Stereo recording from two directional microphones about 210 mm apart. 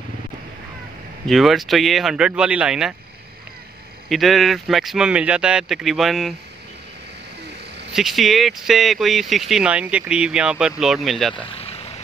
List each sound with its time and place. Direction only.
1.2 s speech: centre (ahead or behind)
4.1 s speech: centre (ahead or behind)
7.9 s speech: centre (ahead or behind)
11.4 s vehicle: 25° left (ahead or behind)